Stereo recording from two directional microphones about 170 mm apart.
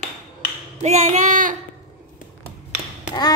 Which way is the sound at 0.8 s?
40° right (ahead or behind).